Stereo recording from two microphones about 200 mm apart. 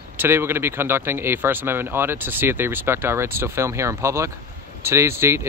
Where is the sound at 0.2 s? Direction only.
10° right (ahead or behind).